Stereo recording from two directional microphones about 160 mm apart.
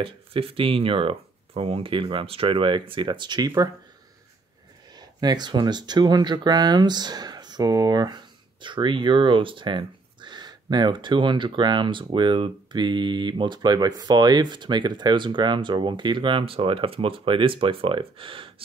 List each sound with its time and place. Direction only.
0.0 s speech: 35° right (ahead or behind)
4.9 s speech: 25° right (ahead or behind)